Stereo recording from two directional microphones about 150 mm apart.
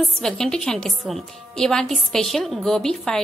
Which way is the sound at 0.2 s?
5° left (ahead or behind).